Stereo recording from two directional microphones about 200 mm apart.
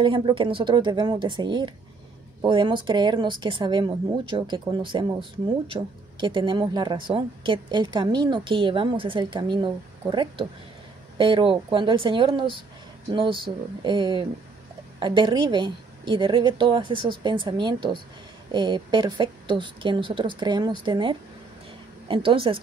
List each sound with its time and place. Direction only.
0.0 s speech: 25° right (ahead or behind)